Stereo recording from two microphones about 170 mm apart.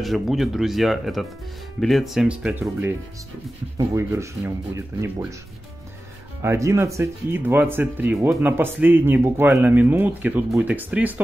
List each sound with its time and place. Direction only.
0.0 s speech: centre (ahead or behind)
6.4 s speech: 15° right (ahead or behind)